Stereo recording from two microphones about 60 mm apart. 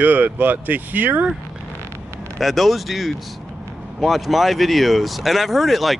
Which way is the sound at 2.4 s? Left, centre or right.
Centre.